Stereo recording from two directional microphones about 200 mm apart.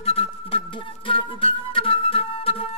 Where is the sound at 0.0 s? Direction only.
30° left (ahead or behind).